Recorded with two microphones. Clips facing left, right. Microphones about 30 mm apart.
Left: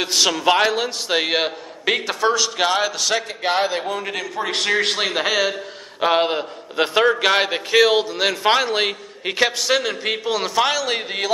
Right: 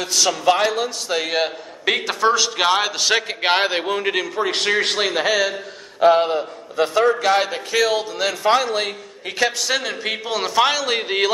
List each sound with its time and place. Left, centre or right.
0.0 s a man's voice: left
2.0 s a man's voice: centre
3.1 s a man's voice: right
3.9 s a man's voice: centre
4.4 s a man's voice: centre
5.9 s a man's voice: left
6.8 s a man's voice: left
9.3 s a man's voice: centre